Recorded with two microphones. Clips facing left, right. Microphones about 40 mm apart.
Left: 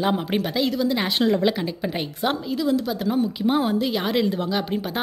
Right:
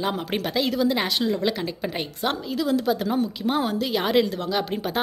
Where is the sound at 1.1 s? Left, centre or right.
Left.